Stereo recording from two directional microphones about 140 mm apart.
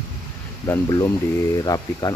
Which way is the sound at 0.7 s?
25° left (ahead or behind).